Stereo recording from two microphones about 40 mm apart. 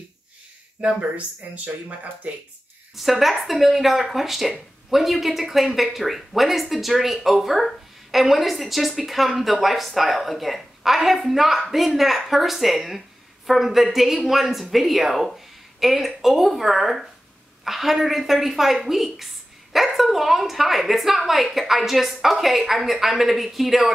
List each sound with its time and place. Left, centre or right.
0.8 s speech: right
1.1 s speech: right
3.0 s speech: centre